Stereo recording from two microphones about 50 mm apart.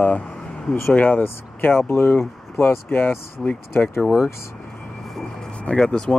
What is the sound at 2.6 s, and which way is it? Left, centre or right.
Speech, left.